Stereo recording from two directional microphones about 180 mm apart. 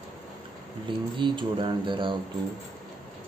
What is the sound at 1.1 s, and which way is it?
Mantra, 25° right (ahead or behind).